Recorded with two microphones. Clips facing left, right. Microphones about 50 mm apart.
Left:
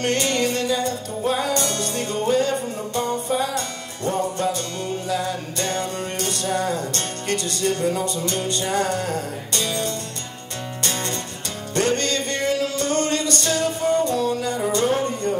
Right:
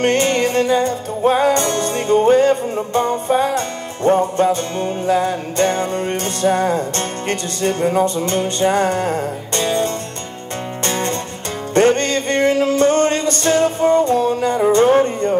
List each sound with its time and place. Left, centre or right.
0.0 s music: right